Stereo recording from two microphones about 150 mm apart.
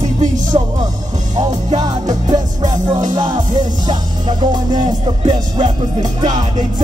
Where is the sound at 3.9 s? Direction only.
30° right (ahead or behind).